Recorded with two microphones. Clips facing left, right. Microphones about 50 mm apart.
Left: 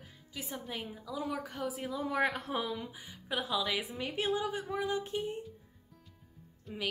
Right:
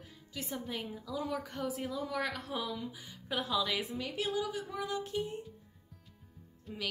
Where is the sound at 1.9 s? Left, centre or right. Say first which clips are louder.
Left 4 dB; left.